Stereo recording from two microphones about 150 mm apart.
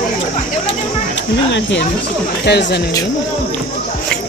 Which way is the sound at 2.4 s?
90° left.